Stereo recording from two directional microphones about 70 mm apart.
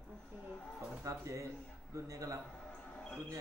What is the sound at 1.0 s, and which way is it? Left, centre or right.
Speech, right.